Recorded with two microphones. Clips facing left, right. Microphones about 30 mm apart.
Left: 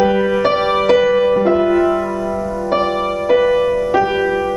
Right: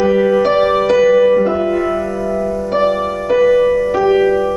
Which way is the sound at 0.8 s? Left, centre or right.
Left.